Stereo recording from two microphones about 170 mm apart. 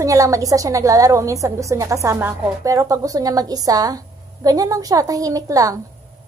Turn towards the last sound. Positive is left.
turn(degrees=-20)  # may be behind; listen again after turning